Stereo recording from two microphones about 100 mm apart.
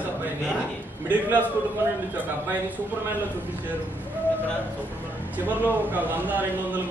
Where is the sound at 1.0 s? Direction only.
15° right (ahead or behind).